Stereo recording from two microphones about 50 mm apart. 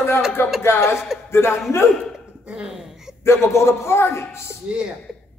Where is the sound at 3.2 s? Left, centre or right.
Left.